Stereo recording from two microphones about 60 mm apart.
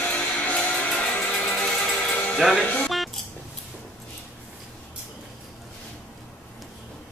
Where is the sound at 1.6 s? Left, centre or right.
Centre.